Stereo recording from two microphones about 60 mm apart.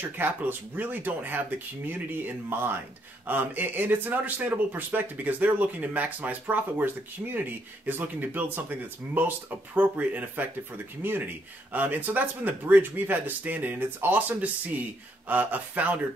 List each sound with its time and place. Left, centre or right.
0.0 s speech: right